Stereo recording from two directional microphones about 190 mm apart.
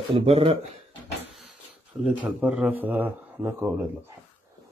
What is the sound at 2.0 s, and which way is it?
A man's voice, 5° right (ahead or behind).